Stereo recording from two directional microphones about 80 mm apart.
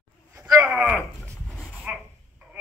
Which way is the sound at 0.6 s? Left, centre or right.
Centre.